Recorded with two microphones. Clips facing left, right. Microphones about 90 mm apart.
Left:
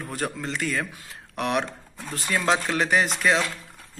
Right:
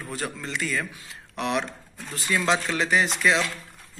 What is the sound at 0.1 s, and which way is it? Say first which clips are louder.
Speech: left 2 dB; 45° left (ahead or behind).